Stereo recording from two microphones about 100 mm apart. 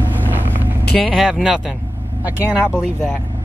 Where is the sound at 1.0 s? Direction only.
Centre (ahead or behind).